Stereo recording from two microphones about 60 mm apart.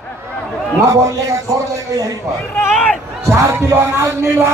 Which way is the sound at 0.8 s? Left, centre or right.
Right.